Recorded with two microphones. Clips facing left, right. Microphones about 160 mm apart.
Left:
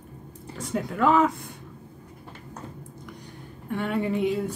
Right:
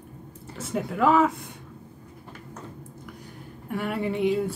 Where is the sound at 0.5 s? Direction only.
5° right (ahead or behind).